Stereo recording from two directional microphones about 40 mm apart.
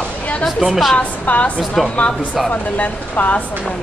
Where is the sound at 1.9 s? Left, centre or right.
Left.